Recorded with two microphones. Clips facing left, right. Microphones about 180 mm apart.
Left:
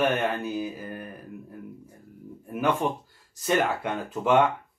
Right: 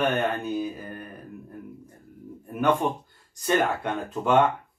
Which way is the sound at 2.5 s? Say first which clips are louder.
Right 2 dB; 5° left (ahead or behind).